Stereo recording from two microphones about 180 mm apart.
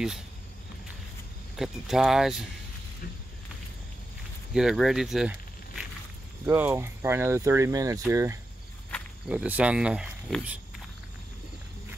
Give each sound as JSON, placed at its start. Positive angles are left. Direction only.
{"t": 1.6, "sound": "speech", "side_deg": 0}
{"t": 4.6, "sound": "speech", "side_deg": 0}
{"t": 6.4, "sound": "speech", "side_deg": -10}
{"t": 9.3, "sound": "speech", "side_deg": -5}